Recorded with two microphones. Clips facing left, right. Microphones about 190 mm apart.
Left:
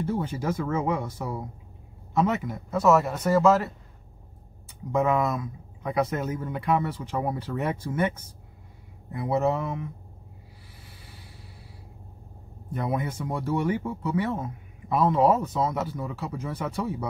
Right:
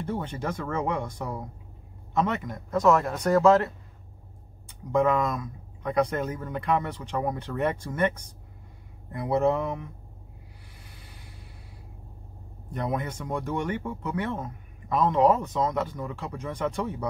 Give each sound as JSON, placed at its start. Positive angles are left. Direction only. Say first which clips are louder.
{"t": 0.0, "sound": "speech", "louder": "left 3 dB", "side_deg": 5}
{"t": 12.7, "sound": "speech", "louder": "left 1 dB", "side_deg": 5}